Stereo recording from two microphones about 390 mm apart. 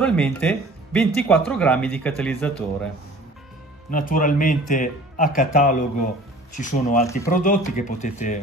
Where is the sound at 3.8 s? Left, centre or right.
Left.